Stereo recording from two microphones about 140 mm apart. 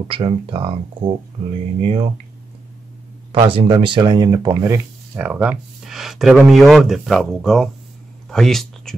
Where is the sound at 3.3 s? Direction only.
40° right (ahead or behind).